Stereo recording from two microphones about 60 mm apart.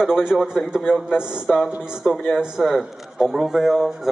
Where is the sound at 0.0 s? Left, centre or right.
Centre.